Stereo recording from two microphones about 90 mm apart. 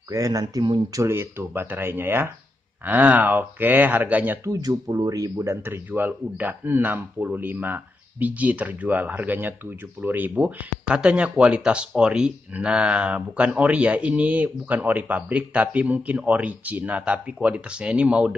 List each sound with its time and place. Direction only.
0.1 s speech: 40° right (ahead or behind)
0.9 s a man's voice: 30° right (ahead or behind)
4.5 s speech: 45° right (ahead or behind)
5.7 s a man's voice: 20° right (ahead or behind)